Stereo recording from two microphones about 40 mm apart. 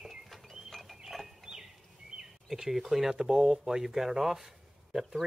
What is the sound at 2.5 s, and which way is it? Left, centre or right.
Speech, centre.